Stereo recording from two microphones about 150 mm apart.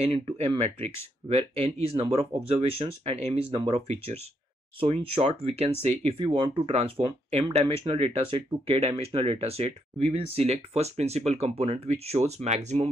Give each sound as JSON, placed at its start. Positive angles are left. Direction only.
{"t": 0.0, "sound": "speech", "side_deg": -45}
{"t": 3.5, "sound": "speech", "side_deg": -30}
{"t": 3.8, "sound": "speech", "side_deg": -45}